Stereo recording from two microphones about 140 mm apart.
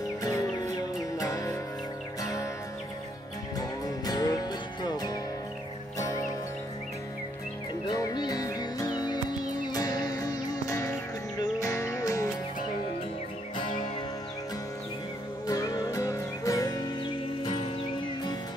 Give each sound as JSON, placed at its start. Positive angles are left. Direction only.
{"t": 0.2, "sound": "music", "side_deg": 25}
{"t": 3.5, "sound": "music", "side_deg": 25}
{"t": 7.9, "sound": "music", "side_deg": 30}
{"t": 13.6, "sound": "music", "side_deg": 35}
{"t": 15.4, "sound": "music", "side_deg": 25}